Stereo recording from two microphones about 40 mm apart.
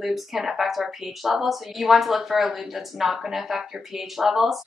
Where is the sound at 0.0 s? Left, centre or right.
Centre.